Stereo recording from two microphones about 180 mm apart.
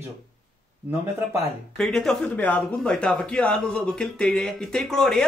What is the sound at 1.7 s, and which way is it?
Speech, 5° left (ahead or behind).